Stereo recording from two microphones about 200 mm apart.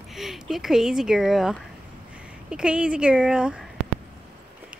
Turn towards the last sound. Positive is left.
turn(degrees=-5)  # may be behind; listen again after turning